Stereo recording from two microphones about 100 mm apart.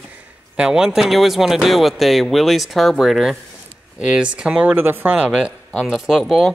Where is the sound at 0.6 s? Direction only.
5° right (ahead or behind).